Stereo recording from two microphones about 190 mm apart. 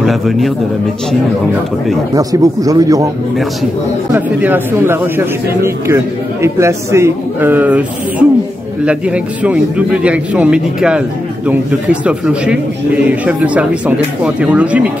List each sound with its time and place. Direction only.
0.0 s a man's voice: centre (ahead or behind)
2.1 s a man's voice: 20° right (ahead or behind)
4.1 s speech: 10° right (ahead or behind)